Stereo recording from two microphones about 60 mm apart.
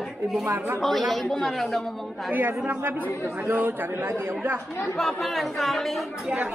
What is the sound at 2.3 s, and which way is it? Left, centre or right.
A man's voice, right.